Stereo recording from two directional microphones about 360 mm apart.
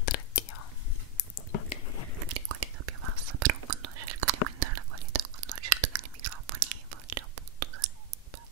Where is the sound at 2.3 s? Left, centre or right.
Right.